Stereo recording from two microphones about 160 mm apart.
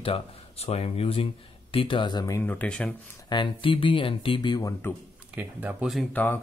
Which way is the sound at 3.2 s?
30° left (ahead or behind).